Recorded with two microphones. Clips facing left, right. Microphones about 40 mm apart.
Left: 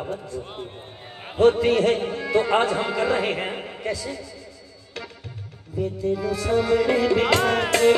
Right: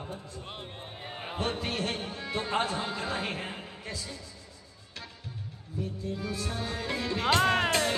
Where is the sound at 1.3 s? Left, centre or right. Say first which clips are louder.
Left 16 dB; left.